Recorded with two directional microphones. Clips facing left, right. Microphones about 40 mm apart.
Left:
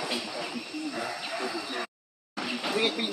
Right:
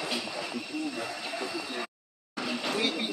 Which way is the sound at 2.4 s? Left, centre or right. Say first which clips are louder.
Left 1 dB; centre.